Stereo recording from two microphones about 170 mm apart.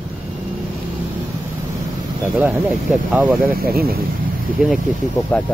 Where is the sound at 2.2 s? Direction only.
10° right (ahead or behind).